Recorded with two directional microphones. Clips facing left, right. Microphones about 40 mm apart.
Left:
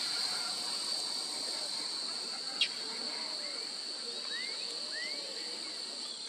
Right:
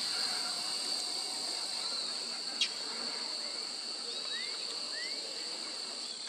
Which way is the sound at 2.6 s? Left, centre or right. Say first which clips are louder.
Left 2 dB; centre.